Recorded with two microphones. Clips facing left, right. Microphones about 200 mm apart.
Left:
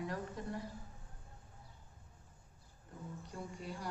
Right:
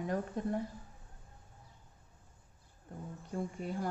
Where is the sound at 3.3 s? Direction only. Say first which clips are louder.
Right 9 dB; 50° right (ahead or behind).